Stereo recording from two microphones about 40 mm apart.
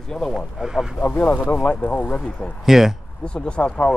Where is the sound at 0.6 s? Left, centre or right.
Centre.